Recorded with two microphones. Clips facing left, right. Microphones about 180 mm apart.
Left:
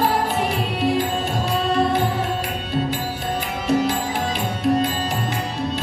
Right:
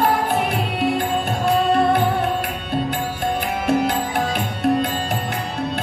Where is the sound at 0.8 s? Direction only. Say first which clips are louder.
Even; 55° right (ahead or behind).